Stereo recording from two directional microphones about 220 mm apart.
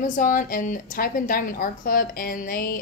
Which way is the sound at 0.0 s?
35° left (ahead or behind).